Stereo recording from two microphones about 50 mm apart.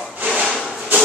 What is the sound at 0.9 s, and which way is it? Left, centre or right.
Rub, right.